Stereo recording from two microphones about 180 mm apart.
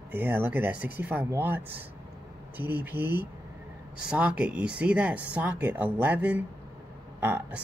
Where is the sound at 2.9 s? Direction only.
10° right (ahead or behind).